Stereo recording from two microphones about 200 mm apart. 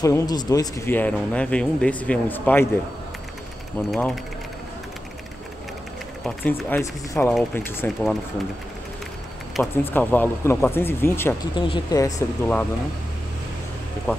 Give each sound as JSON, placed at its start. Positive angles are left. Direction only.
{"t": 0.0, "sound": "speech", "side_deg": 20}
{"t": 3.9, "sound": "speech", "side_deg": 0}
{"t": 6.2, "sound": "speech", "side_deg": 10}
{"t": 9.6, "sound": "speech", "side_deg": 10}
{"t": 11.5, "sound": "speech", "side_deg": 25}
{"t": 14.1, "sound": "speech", "side_deg": 10}